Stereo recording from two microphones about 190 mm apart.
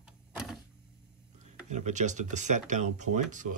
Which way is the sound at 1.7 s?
40° right (ahead or behind).